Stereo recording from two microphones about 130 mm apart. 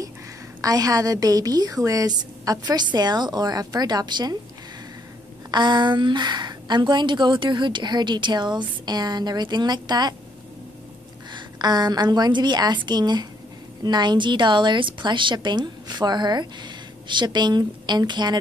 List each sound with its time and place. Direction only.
0.6 s a woman's voice: 30° right (ahead or behind)
5.5 s a woman's voice: 35° right (ahead or behind)
11.3 s a woman's voice: 35° right (ahead or behind)